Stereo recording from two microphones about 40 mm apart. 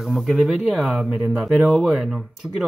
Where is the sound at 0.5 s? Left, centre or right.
Centre.